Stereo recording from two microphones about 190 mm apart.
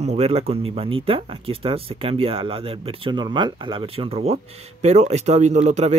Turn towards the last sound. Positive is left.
turn(degrees=-35)  # may be behind; listen again after turning